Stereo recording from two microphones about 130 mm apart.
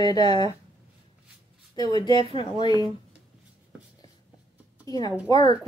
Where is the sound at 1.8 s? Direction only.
30° left (ahead or behind).